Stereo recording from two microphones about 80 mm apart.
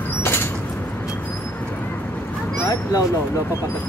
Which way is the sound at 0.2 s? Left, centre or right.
Left.